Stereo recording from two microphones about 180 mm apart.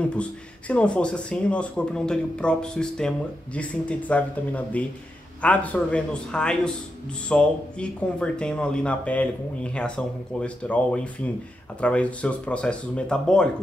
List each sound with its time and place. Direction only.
0.1 s speech: 5° left (ahead or behind)